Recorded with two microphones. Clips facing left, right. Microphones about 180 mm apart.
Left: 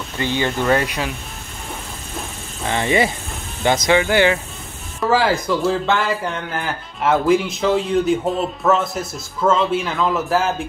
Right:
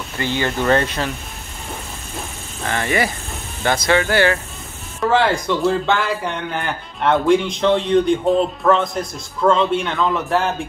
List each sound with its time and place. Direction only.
0.2 s speech: 15° left (ahead or behind)
2.6 s speech: 20° left (ahead or behind)
5.0 s speech: 5° left (ahead or behind)